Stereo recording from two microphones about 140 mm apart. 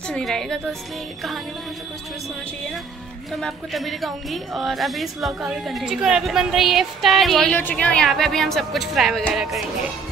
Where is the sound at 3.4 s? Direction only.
Centre (ahead or behind).